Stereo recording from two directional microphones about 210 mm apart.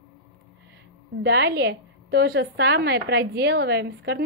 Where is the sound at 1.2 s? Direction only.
55° right (ahead or behind).